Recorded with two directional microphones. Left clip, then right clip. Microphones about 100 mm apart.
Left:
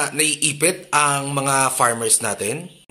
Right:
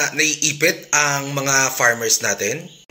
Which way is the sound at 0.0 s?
35° left (ahead or behind).